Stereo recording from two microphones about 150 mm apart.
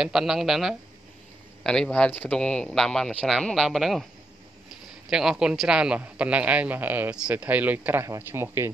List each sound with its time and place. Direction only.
0.0 s speech: 5° right (ahead or behind)
5.1 s a man's voice: 5° right (ahead or behind)